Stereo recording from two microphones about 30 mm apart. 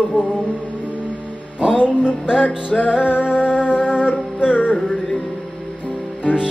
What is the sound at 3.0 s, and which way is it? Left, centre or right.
Music, left.